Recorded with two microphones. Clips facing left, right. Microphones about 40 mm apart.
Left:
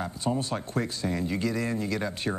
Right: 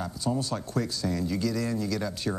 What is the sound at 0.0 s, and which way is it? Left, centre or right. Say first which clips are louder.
Speech: left 1 dB; left.